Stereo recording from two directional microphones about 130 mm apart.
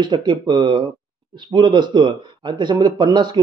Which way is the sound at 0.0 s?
35° right (ahead or behind).